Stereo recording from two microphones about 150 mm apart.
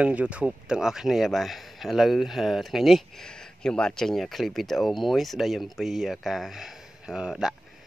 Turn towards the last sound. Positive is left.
turn(degrees=-5)  # may be behind; listen again after turning